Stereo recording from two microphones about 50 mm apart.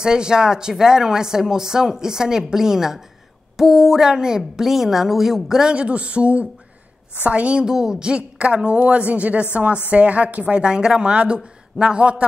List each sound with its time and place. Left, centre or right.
0.0 s a woman's voice: centre